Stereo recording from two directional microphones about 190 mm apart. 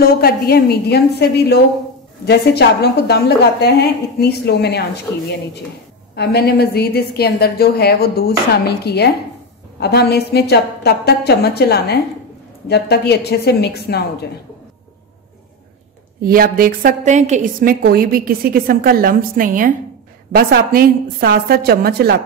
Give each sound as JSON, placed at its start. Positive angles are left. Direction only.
{"t": 0.0, "sound": "a woman's voice", "side_deg": 50}
{"t": 6.1, "sound": "a woman's voice", "side_deg": 55}
{"t": 16.2, "sound": "a woman's voice", "side_deg": -50}